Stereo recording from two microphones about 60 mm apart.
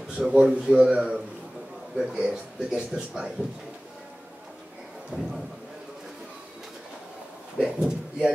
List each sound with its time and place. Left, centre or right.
0.3 s a man's voice: centre
5.1 s speech: right
7.5 s speech: centre